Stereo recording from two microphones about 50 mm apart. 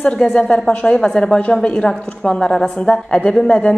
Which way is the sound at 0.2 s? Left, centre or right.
Centre.